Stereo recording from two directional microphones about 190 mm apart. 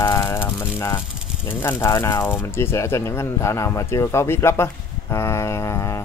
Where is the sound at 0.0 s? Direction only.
25° left (ahead or behind).